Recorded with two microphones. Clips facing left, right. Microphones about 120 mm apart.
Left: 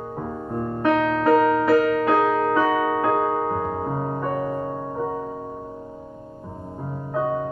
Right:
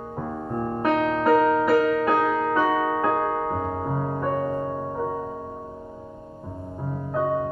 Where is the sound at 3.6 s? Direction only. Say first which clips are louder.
Left 1 dB; 5° left (ahead or behind).